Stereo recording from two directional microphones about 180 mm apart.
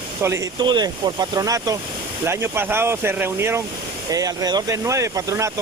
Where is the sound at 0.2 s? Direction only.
15° right (ahead or behind).